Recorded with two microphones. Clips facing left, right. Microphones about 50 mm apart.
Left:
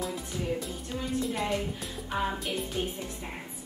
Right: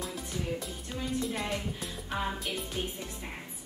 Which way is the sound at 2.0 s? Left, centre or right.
Centre.